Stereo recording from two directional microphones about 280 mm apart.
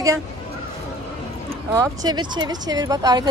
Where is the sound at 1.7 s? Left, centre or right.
Centre.